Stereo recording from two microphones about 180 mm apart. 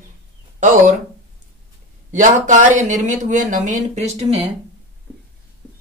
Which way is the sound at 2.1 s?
45° right (ahead or behind).